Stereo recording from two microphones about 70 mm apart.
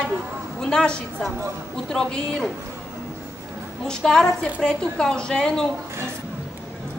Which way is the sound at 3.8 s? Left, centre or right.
Centre.